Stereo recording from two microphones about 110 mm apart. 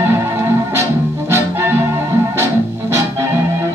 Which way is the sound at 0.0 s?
25° right (ahead or behind).